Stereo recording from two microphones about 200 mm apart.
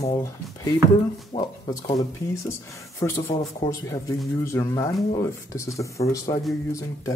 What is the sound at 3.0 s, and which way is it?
Speech, 15° left (ahead or behind).